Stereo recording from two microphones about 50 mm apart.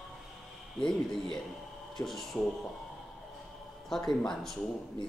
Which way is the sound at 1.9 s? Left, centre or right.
Centre.